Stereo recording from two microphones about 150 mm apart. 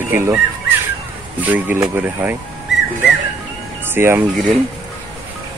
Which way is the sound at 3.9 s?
15° right (ahead or behind).